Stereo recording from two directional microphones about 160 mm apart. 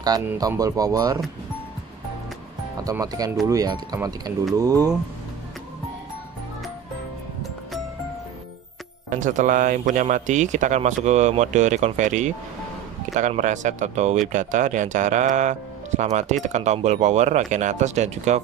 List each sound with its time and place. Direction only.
0.3 s speech: 20° right (ahead or behind)
2.8 s speech: 20° right (ahead or behind)
9.1 s speech: 50° right (ahead or behind)